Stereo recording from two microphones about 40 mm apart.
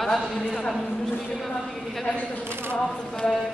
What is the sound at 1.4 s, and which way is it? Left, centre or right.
A woman's voice, centre.